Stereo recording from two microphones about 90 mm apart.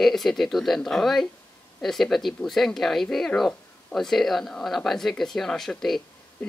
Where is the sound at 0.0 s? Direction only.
Centre (ahead or behind).